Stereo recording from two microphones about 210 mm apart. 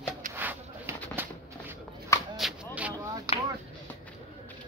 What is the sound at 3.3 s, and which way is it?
Chop, 15° right (ahead or behind).